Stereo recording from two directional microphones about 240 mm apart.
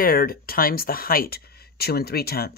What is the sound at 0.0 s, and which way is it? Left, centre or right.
Speech, left.